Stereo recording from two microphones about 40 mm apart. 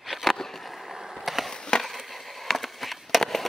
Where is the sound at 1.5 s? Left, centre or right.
Centre.